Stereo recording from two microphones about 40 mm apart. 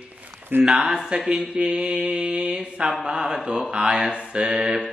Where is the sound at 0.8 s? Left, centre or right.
Centre.